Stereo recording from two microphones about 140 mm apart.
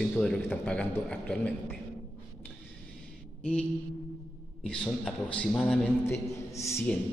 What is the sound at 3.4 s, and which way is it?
Mantra, 10° left (ahead or behind).